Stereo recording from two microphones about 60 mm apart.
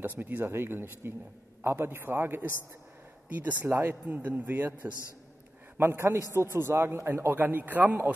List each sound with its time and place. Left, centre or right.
0.0 s a man's voice: right
3.6 s a man's voice: right
4.1 s a man's voice: right
5.8 s a man's voice: right